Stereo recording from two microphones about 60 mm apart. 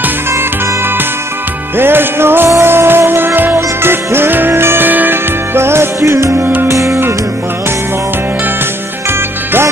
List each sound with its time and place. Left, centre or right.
1.8 s music: right
6.3 s music: right
6.7 s music: right